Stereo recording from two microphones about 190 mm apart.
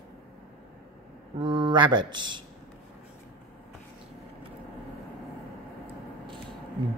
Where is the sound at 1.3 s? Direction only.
25° right (ahead or behind).